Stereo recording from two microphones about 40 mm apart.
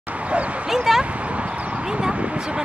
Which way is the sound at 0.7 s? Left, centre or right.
Centre.